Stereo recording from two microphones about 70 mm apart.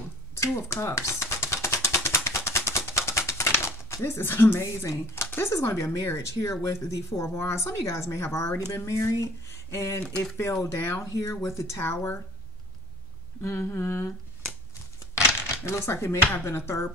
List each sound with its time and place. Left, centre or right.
0.4 s typewriter: left
4.6 s speech: left
13.4 s speech: left
15.4 s speech: left